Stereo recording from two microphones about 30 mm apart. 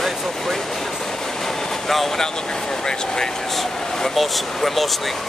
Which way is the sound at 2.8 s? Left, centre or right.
Left.